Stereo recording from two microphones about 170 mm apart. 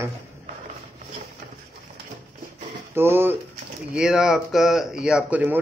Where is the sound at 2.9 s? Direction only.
15° right (ahead or behind).